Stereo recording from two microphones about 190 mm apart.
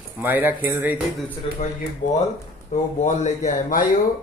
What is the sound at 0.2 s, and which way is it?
Music, 10° right (ahead or behind).